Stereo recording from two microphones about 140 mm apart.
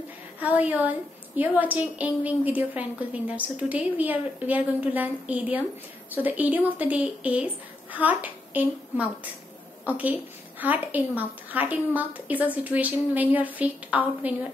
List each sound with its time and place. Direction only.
0.4 s a woman's voice: 10° right (ahead or behind)